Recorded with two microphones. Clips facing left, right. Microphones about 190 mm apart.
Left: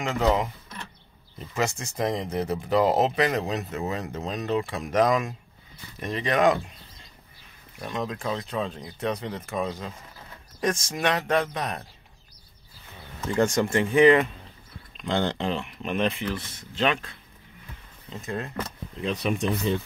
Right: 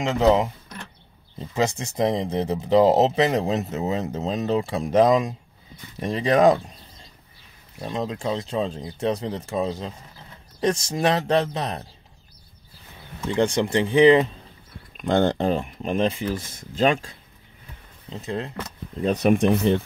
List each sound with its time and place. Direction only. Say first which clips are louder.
0.0 s speech: right 5 dB; 25° right (ahead or behind)
13.5 s speech: right 2 dB; 25° right (ahead or behind)
15.0 s speech: right 6 dB; 50° right (ahead or behind); by 16.3 s 30° right (ahead or behind)
16.3 s speech: right 5 dB; 45° right (ahead or behind)
18.1 s speech: right 3 dB; 20° right (ahead or behind)
18.9 s speech: right 8 dB; 45° right (ahead or behind); by 19.8 s 65° right (ahead or behind)